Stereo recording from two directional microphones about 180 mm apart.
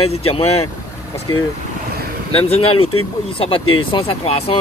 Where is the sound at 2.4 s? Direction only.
35° left (ahead or behind).